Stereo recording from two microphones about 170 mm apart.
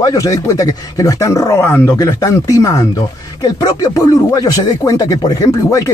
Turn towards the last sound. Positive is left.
turn(degrees=20)  # may be behind; listen again after turning